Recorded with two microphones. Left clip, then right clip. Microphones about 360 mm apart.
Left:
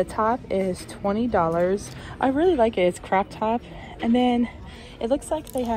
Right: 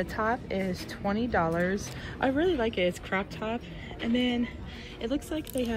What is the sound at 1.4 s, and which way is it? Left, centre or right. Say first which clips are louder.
Speech: left 7 dB; left.